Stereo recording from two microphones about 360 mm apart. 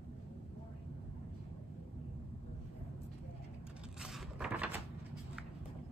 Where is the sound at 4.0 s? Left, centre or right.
Centre.